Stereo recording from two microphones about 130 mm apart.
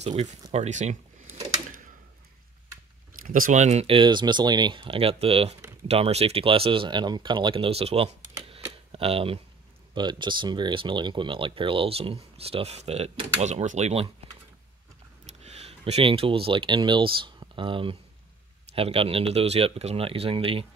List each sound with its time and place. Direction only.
0.0 s speech: 55° right (ahead or behind)
3.1 s speech: 90° right; by 13.5 s 50° right (ahead or behind)
13.5 s speech: 60° right (ahead or behind)
15.2 s speech: 55° right (ahead or behind)